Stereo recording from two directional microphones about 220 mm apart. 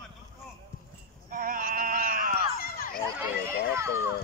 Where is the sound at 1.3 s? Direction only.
40° right (ahead or behind).